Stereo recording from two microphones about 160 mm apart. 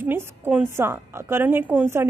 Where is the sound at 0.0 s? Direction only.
15° right (ahead or behind).